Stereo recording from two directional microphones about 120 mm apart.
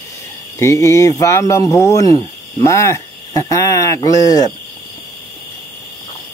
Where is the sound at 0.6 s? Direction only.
25° left (ahead or behind).